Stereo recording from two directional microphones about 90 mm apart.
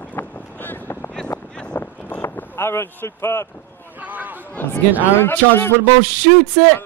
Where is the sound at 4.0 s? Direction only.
15° right (ahead or behind).